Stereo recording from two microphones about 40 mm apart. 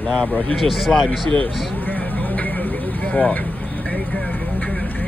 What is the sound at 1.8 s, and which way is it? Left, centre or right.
Vehicle, left.